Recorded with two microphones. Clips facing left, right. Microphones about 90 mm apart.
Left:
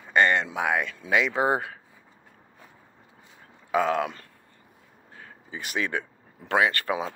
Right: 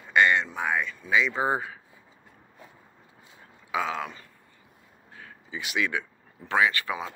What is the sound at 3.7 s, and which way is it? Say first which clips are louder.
Speech: left 5 dB; 50° left (ahead or behind).